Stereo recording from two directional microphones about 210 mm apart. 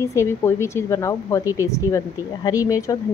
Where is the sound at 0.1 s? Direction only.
15° left (ahead or behind).